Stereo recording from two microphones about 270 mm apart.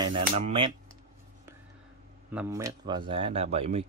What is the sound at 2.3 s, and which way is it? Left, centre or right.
Speech, centre.